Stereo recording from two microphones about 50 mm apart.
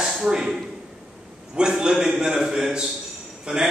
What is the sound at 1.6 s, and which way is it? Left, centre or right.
A man's voice, centre.